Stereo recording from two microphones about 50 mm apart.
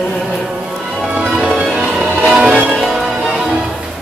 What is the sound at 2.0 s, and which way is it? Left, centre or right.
Music, right.